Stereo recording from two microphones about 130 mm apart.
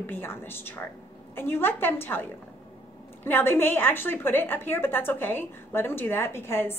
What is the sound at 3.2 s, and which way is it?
A woman's voice, 15° left (ahead or behind).